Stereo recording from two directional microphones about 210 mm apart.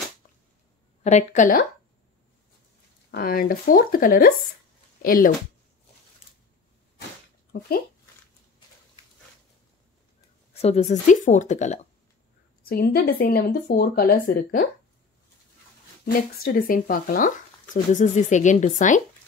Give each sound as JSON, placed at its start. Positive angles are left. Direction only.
{"t": 1.0, "sound": "speech", "side_deg": 35}
{"t": 3.1, "sound": "speech", "side_deg": 45}
{"t": 10.5, "sound": "speech", "side_deg": 30}
{"t": 12.6, "sound": "speech", "side_deg": 45}
{"t": 16.1, "sound": "speech", "side_deg": 45}